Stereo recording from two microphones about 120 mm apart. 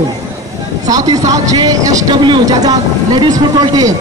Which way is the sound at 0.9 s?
30° right (ahead or behind).